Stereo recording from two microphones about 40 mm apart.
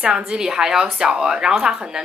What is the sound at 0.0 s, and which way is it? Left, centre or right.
Speech, right.